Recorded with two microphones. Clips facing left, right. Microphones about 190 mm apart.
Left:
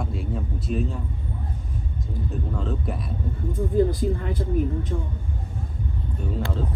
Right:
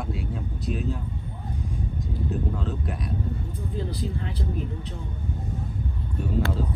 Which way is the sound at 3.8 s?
50° left (ahead or behind).